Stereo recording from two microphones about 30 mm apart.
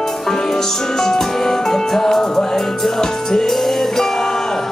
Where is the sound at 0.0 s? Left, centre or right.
Centre.